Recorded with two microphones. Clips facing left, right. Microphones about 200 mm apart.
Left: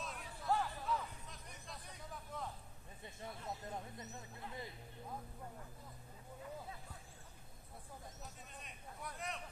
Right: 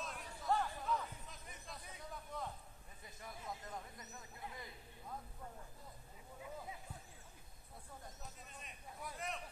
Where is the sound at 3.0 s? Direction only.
25° left (ahead or behind).